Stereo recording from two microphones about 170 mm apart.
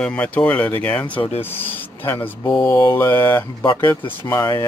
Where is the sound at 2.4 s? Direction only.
30° left (ahead or behind).